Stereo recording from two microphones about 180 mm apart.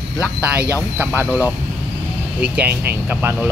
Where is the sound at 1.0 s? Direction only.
10° right (ahead or behind).